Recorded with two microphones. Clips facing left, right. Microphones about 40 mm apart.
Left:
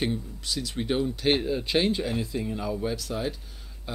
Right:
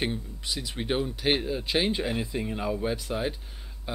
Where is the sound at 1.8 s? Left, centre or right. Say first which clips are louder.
Left 1 dB; right.